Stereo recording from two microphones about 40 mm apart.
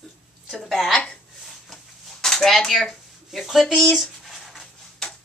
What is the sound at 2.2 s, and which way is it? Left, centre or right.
Speech, centre.